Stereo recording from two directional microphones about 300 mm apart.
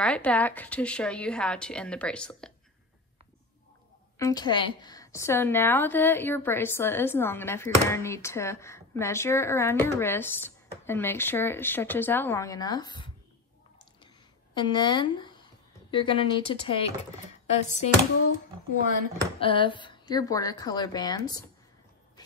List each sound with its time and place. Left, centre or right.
0.0 s a woman's voice: centre
4.2 s a woman's voice: centre
14.5 s a woman's voice: centre
19.4 s a woman's voice: centre